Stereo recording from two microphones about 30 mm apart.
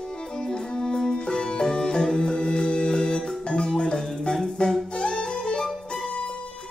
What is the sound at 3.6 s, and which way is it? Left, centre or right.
Marimba, left.